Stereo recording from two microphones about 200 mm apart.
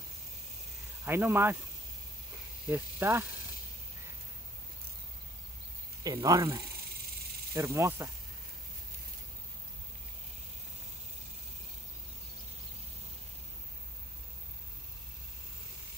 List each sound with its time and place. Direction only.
1.0 s speech: 10° right (ahead or behind)
2.7 s speech: 15° right (ahead or behind)
6.0 s speech: 15° right (ahead or behind)